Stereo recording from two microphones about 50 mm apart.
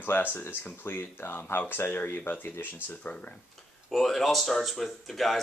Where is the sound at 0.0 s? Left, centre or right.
Left.